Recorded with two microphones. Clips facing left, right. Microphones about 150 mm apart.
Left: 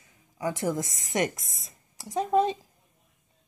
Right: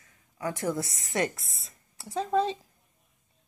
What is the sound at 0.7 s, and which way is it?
A woman's voice, 15° left (ahead or behind).